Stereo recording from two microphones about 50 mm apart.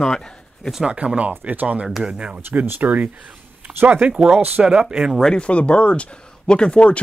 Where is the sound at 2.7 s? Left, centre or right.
Right.